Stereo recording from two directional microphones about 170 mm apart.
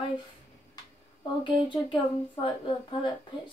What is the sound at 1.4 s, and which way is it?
Speech, 30° left (ahead or behind).